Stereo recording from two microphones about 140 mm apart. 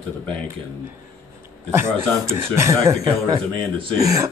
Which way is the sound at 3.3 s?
40° right (ahead or behind).